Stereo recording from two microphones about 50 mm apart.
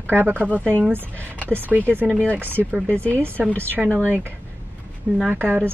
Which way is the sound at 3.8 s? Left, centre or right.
Centre.